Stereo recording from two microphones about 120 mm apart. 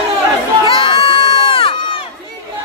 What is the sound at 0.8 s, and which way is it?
Crowd, 45° left (ahead or behind).